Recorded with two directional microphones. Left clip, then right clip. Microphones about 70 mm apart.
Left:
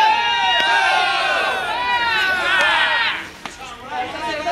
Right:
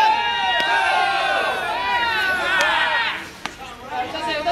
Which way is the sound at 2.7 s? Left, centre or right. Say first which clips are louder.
Left 2 dB; centre.